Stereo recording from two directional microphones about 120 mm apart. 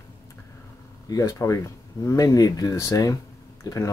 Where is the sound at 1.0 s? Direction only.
25° left (ahead or behind).